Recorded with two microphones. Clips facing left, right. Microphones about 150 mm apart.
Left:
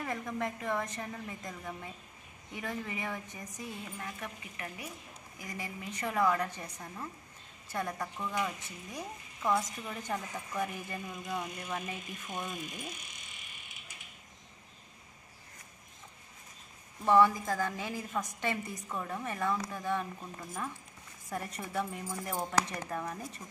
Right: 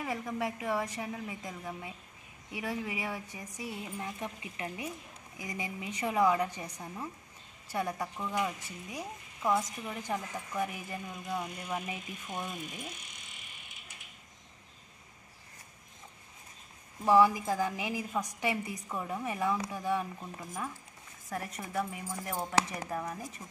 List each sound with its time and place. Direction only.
0.0 s a woman's voice: 5° right (ahead or behind)
17.0 s a woman's voice: 10° right (ahead or behind)